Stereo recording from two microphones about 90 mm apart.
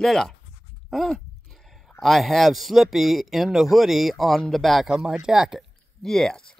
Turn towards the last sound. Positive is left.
turn(degrees=5)  # may be behind; listen again after turning